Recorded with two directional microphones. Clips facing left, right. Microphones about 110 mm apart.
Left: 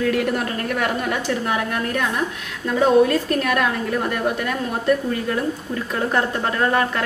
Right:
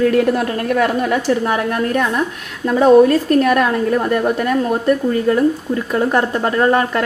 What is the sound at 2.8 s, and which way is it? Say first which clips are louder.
Speech: right 6 dB; 40° right (ahead or behind).